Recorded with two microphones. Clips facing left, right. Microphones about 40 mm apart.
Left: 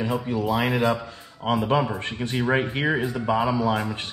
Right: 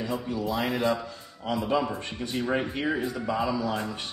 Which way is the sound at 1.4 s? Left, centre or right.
Left.